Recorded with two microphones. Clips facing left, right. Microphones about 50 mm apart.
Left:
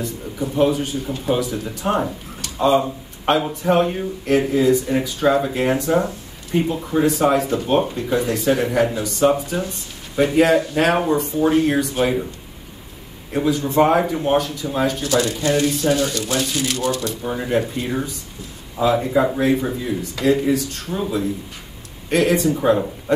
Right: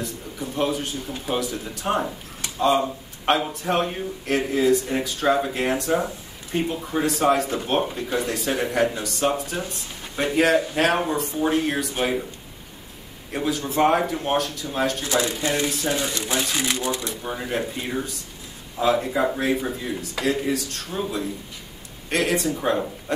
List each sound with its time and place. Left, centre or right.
0.0 s a man's voice: centre
13.3 s speech: centre
15.0 s speech: centre
17.2 s speech: centre